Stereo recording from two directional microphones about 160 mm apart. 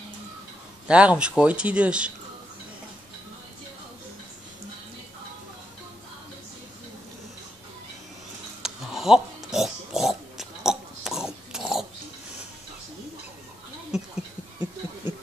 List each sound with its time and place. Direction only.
0.8 s speech: 5° right (ahead or behind)
8.6 s oink: 5° right (ahead or behind)
14.1 s a sound: 10° right (ahead or behind)